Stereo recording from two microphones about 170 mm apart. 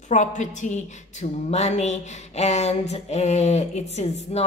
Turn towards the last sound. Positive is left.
turn(degrees=40)  # may be behind; listen again after turning